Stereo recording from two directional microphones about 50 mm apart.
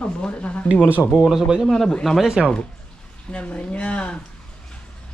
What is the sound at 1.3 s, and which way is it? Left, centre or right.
Speech, centre.